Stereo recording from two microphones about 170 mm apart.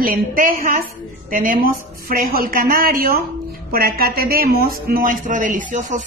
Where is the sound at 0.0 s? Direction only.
60° right (ahead or behind).